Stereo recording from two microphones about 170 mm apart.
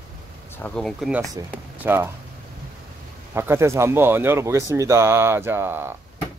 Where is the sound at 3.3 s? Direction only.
15° right (ahead or behind).